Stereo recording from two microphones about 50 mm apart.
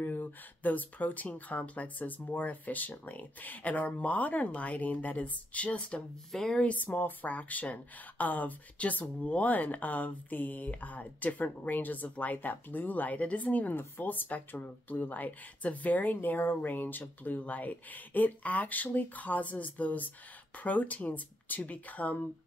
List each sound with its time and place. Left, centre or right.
0.0 s speech: left
6.3 s speech: centre
6.6 s speech: left
13.7 s speech: left